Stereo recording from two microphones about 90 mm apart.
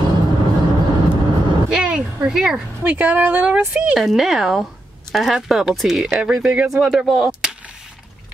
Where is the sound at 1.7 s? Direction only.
10° right (ahead or behind).